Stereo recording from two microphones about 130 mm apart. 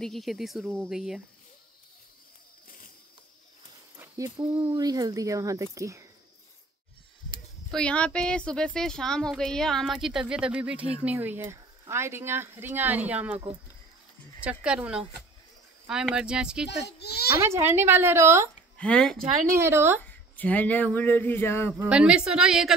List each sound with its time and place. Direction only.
0.0 s speech: centre (ahead or behind)
4.2 s speech: 30° right (ahead or behind)
7.7 s speech: 10° left (ahead or behind); by 13.4 s 10° right (ahead or behind)
14.4 s speech: 10° right (ahead or behind)
17.4 s speech: 20° right (ahead or behind)
18.8 s speech: 10° left (ahead or behind)
19.4 s speech: 20° right (ahead or behind)
20.1 s speech: 10° left (ahead or behind)
21.8 s speech: 10° right (ahead or behind)